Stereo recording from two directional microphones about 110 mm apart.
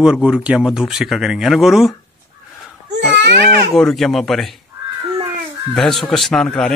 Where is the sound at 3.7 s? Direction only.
Centre (ahead or behind).